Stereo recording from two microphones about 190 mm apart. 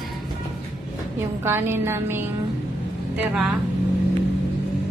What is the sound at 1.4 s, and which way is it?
A woman's voice, 10° right (ahead or behind).